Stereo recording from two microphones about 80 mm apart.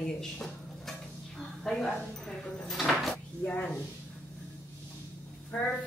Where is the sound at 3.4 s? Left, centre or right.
Centre.